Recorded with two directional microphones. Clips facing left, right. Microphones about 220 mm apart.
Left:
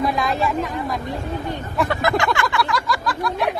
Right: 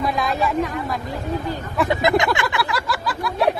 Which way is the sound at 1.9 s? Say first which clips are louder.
Right 4 dB; 20° right (ahead or behind).